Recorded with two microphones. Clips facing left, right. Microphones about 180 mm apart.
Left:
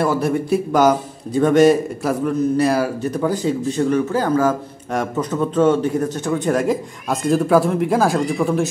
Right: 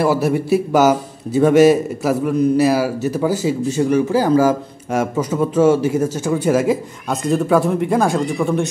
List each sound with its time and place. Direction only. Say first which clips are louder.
0.0 s a man's voice: right 2 dB; 5° right (ahead or behind)